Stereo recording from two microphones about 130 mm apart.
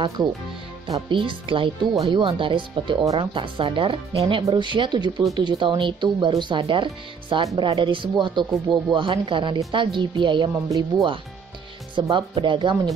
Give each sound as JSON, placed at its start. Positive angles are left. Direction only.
{"t": 0.8, "sound": "speech", "side_deg": -35}
{"t": 4.5, "sound": "speech", "side_deg": -35}